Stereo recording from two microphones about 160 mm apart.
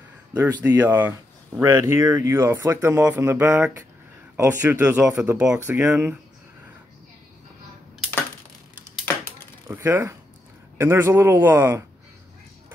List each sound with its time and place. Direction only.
0.6 s speech: 10° right (ahead or behind)
9.1 s a sound: 10° left (ahead or behind)
9.8 s speech: 15° right (ahead or behind)